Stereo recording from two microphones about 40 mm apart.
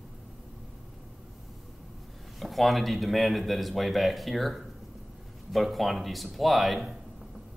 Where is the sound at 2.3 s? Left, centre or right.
Centre.